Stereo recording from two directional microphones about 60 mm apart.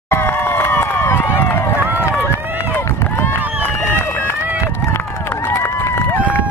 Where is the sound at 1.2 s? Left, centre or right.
Left.